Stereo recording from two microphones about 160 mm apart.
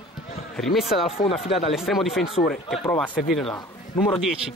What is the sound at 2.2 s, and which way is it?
Speech, 40° left (ahead or behind).